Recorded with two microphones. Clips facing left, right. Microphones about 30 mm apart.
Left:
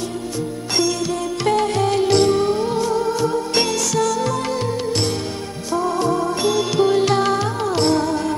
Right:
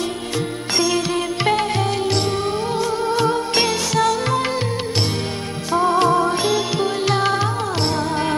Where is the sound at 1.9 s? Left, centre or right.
Centre; by 3.2 s right.